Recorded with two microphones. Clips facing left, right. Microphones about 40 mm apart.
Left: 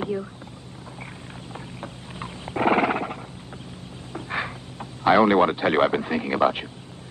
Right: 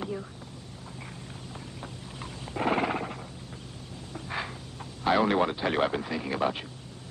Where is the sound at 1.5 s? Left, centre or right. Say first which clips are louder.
Left 6 dB; left.